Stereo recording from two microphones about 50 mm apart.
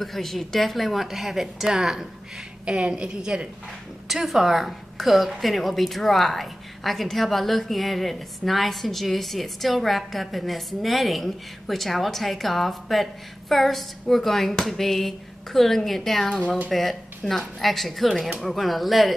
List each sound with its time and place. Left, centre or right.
0.0 s a woman's voice: centre
2.7 s a woman's voice: centre
4.1 s a woman's voice: centre